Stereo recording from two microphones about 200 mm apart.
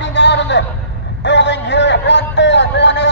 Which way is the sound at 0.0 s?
60° left (ahead or behind).